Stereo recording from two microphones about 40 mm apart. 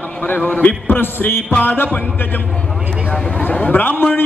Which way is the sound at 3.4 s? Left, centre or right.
Left.